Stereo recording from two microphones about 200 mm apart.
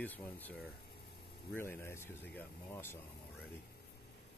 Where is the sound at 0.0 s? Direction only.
10° left (ahead or behind).